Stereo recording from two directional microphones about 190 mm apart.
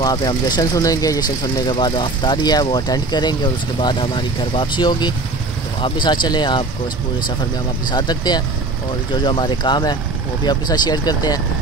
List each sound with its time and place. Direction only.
0.0 s speech: 20° left (ahead or behind)
7.9 s speech: 20° left (ahead or behind)